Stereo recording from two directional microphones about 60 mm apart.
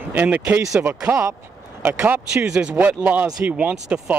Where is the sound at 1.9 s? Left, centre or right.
Right.